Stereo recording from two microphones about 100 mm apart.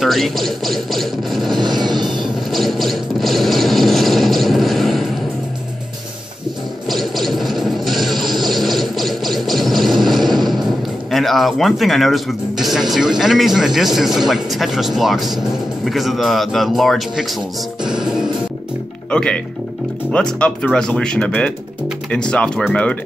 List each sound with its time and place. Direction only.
0.0 s speech: centre (ahead or behind)
1.5 s vehicle: 50° right (ahead or behind)
2.5 s speech: centre (ahead or behind)
6.9 s music: centre (ahead or behind)
10.0 s a sound: centre (ahead or behind)
10.5 s speech: centre (ahead or behind)
17.8 s music: 5° right (ahead or behind)
19.0 s speech: 10° left (ahead or behind)